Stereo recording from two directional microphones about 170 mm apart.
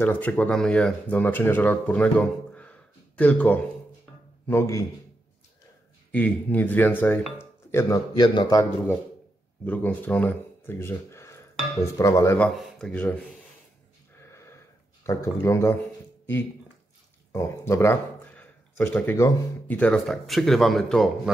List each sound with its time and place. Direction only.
0.0 s speech: 10° left (ahead or behind)
6.1 s speech: 10° left (ahead or behind)
9.7 s speech: 10° left (ahead or behind)
12.4 s speech: centre (ahead or behind)
15.0 s speech: 15° left (ahead or behind)
17.3 s speech: 15° left (ahead or behind)